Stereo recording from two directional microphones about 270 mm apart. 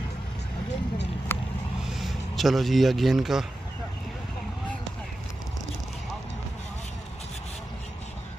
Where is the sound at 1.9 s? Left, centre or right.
Centre.